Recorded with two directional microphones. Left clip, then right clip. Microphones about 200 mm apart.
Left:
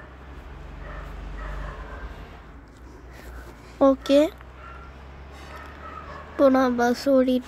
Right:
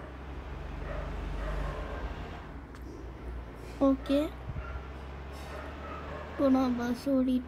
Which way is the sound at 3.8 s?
25° left (ahead or behind).